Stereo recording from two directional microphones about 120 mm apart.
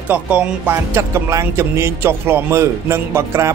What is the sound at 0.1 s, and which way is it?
Speech, 15° right (ahead or behind).